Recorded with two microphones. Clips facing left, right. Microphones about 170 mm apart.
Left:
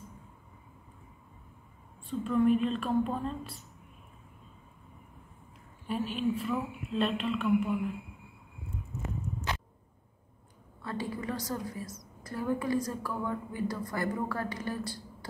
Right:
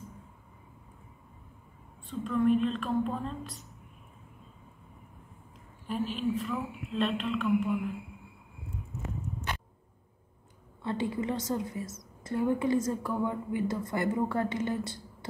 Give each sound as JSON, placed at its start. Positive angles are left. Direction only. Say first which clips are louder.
{"t": 2.0, "sound": "a woman's voice", "louder": "left 1 dB", "side_deg": 5}
{"t": 5.9, "sound": "a woman's voice", "louder": "even", "side_deg": 0}
{"t": 10.8, "sound": "a woman's voice", "louder": "right 5 dB", "side_deg": -25}